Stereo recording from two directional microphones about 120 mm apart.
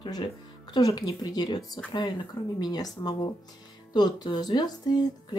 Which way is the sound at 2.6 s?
35° left (ahead or behind).